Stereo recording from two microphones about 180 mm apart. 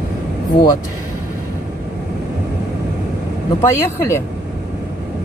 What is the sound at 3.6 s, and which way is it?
Speech, 15° left (ahead or behind).